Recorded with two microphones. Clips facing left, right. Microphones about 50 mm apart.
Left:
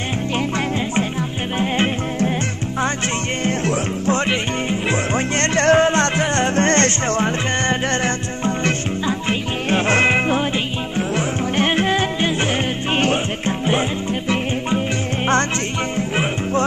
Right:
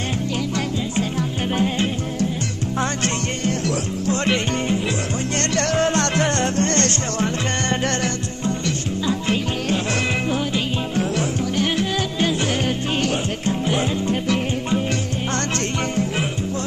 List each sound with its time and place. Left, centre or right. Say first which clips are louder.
1.6 s music: left 4 dB; left
3.4 s music: left 3 dB; left
5.5 s music: left 6 dB; left